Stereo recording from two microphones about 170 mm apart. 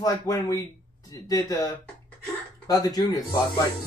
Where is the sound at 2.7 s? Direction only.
20° left (ahead or behind).